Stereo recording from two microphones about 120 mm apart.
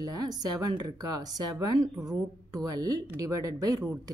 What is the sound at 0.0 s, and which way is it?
Speech, 30° right (ahead or behind).